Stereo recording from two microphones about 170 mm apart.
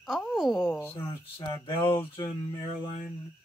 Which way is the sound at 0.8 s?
10° left (ahead or behind).